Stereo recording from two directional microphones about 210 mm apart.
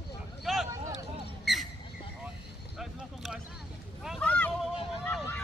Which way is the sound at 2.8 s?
Centre (ahead or behind).